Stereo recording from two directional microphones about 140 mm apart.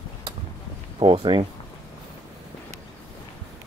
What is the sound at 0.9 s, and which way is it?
Speech, 35° right (ahead or behind).